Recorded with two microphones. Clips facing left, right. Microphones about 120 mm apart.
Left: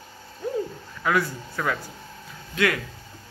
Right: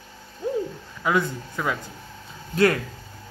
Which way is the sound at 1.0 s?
20° right (ahead or behind).